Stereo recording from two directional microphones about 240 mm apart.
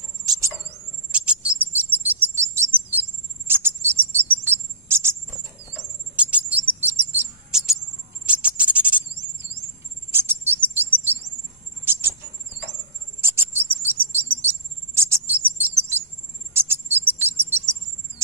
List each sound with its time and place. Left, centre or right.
0.2 s a sound: centre
1.1 s bird: centre
3.4 s cricket: centre
6.1 s bird: centre
8.3 s music: centre
10.1 s bird vocalization: centre
11.8 s a sound: centre
13.2 s bird: centre
15.0 s a sound: centre
16.5 s cricket: centre